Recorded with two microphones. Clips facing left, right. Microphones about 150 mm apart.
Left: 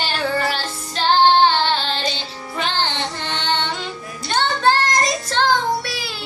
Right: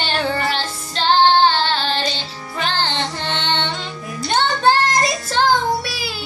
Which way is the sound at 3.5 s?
5° left (ahead or behind).